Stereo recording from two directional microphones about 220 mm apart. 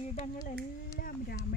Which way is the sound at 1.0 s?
40° left (ahead or behind).